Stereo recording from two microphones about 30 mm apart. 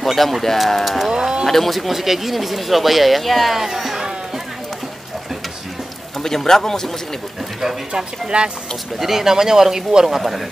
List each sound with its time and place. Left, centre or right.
0.0 s speech: centre
1.1 s speech: right
1.5 s speech: centre
3.5 s speech: centre
6.2 s speech: centre
7.9 s speech: right
9.0 s speech: centre